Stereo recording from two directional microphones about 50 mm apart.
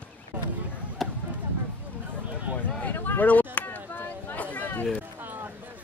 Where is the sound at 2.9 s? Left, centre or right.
Left.